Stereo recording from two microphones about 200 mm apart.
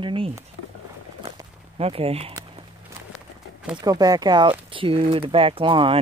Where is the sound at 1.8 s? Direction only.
30° right (ahead or behind).